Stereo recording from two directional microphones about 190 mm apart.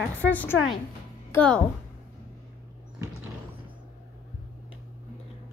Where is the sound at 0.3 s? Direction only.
10° left (ahead or behind).